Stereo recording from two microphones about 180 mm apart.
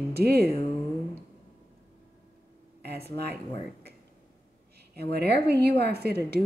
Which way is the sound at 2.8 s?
65° right (ahead or behind).